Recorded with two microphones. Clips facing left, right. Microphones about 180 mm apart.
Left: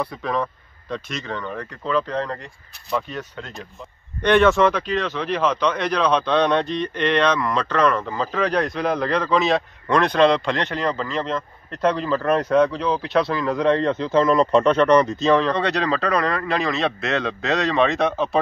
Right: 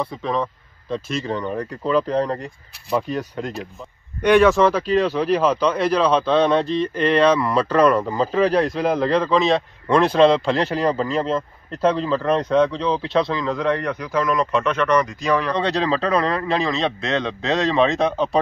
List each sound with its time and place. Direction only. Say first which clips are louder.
0.2 s speech: right 1 dB; centre (ahead or behind)
1.0 s speech: right 5 dB; 30° right (ahead or behind)
4.2 s speech: right 2 dB; 5° right (ahead or behind)
8.2 s speech: right 4 dB; 30° right (ahead or behind)
8.5 s speech: right 3 dB; 5° right (ahead or behind)
10.9 s speech: right 4 dB; 35° right (ahead or behind)
11.8 s speech: right 1 dB; centre (ahead or behind)
13.5 s a man's voice: left 3 dB; 20° left (ahead or behind)
15.6 s a man's voice: right 1 dB; 30° right (ahead or behind)
17.5 s speech: right 2 dB; centre (ahead or behind)